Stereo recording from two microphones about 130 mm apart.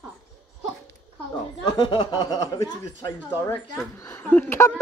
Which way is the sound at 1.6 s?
35° left (ahead or behind).